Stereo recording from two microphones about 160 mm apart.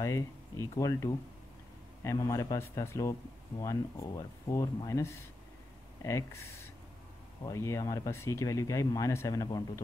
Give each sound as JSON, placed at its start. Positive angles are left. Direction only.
{"t": 0.0, "sound": "speech", "side_deg": 20}
{"t": 7.4, "sound": "speech", "side_deg": 20}